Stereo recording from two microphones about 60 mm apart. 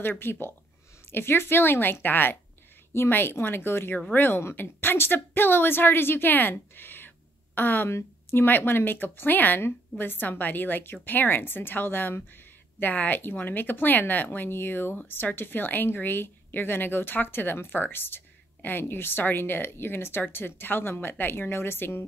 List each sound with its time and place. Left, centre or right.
0.0 s speech: left
6.8 s a sound: left
7.5 s speech: left
7.9 s speech: left